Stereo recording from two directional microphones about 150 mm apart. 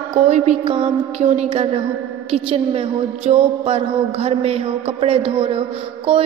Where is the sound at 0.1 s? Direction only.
45° right (ahead or behind).